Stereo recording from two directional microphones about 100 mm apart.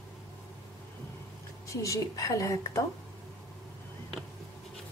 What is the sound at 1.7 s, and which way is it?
A woman's voice, 35° left (ahead or behind).